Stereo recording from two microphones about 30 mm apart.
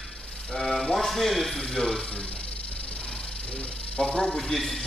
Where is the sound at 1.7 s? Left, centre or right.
Centre.